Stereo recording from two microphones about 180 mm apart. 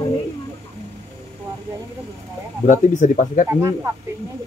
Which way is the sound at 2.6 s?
45° left (ahead or behind).